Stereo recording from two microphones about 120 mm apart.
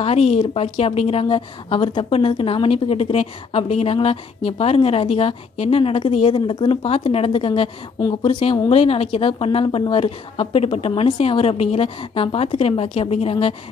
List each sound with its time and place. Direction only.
0.0 s speech: 60° left (ahead or behind)